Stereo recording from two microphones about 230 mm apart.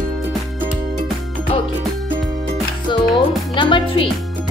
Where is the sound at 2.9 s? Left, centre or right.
Centre.